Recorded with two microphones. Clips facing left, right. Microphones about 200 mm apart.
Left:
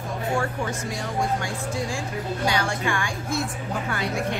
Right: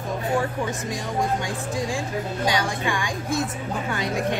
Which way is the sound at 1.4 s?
15° right (ahead or behind).